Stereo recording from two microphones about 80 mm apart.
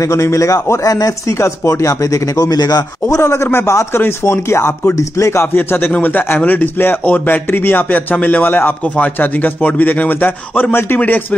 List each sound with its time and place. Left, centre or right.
0.0 s speech: left
3.2 s a man's voice: left